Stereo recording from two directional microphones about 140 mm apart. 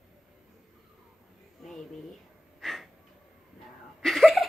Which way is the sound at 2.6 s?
Centre (ahead or behind).